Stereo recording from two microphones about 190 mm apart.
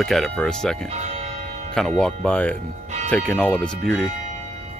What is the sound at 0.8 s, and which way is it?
Church bell, 35° right (ahead or behind).